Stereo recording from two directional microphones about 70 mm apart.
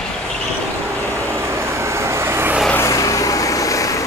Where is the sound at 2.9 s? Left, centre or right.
Left.